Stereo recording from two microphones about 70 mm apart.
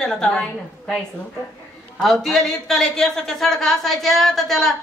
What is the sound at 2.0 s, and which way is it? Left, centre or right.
A woman's voice, centre.